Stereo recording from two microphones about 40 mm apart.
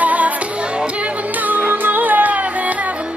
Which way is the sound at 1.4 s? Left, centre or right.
Right.